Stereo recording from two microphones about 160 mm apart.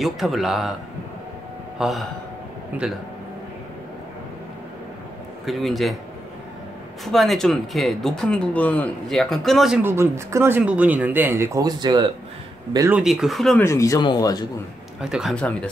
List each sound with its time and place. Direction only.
0.0 s speech: centre (ahead or behind)
1.8 s speech: centre (ahead or behind)
5.4 s speech: centre (ahead or behind)
7.1 s speech: centre (ahead or behind)
9.8 s speech: 15° right (ahead or behind)
12.9 s speech: centre (ahead or behind)
13.6 s speech: 20° left (ahead or behind)
15.0 s speech: 5° right (ahead or behind)
15.3 s speech: 5° left (ahead or behind)